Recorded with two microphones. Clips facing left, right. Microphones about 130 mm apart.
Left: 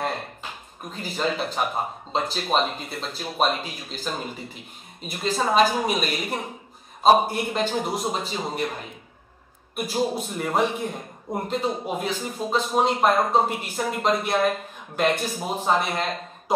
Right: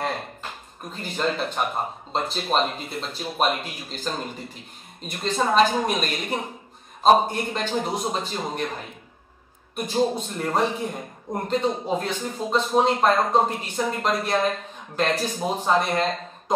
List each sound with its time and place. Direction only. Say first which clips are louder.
0.0 s a man's voice: even; 5° left (ahead or behind)